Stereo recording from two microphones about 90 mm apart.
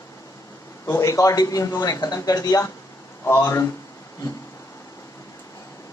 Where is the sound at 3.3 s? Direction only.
30° left (ahead or behind).